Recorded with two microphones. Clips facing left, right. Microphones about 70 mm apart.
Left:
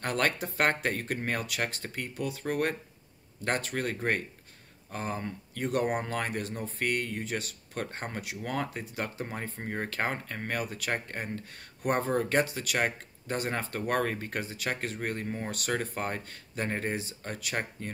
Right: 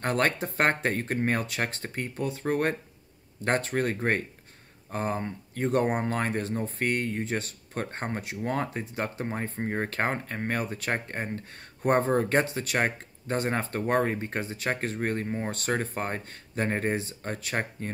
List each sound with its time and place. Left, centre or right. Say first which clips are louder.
0.0 s speech: right 3 dB; right
15.2 s speech: right 4 dB; centre
15.5 s speech: right 3 dB; right